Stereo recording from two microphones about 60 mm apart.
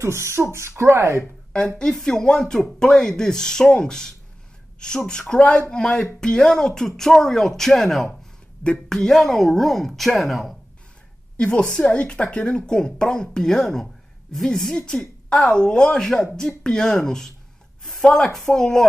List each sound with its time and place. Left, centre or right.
0.0 s speech: right
1.2 s a woman's voice: centre
11.3 s a woman's voice: centre